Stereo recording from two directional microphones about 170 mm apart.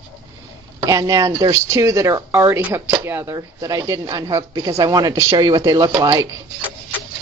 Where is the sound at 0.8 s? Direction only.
20° right (ahead or behind).